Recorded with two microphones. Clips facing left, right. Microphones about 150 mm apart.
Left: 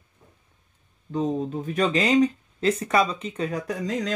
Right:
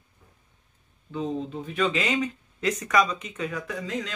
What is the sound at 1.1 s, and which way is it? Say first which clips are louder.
Speech: left 4 dB; 40° left (ahead or behind).